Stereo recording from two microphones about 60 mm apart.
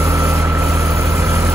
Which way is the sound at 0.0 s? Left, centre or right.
Right.